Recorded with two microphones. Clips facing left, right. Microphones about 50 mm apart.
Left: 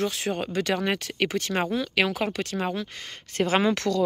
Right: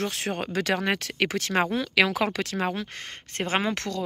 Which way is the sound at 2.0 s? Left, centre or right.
Right.